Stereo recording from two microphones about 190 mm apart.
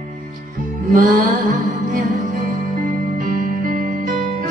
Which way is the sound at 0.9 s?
45° right (ahead or behind).